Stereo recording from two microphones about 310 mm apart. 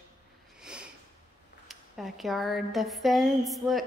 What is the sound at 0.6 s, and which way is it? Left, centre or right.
Sniff, centre.